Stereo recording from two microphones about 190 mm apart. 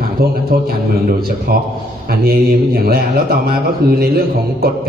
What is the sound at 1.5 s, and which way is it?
A man's voice, 50° right (ahead or behind).